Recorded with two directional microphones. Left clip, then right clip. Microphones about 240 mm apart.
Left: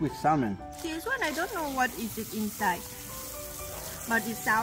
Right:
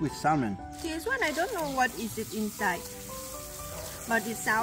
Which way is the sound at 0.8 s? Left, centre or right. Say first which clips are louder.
Right 1 dB; centre.